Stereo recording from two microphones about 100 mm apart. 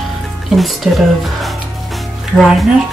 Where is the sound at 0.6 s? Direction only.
Centre (ahead or behind).